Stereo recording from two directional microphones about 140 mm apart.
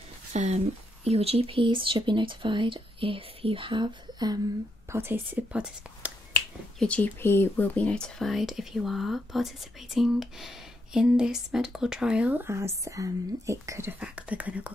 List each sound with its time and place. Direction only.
0.3 s speech: 55° right (ahead or behind); by 4.4 s 30° right (ahead or behind)
4.8 s speech: 15° right (ahead or behind)
6.8 s speech: 10° left (ahead or behind); by 14.7 s 10° right (ahead or behind)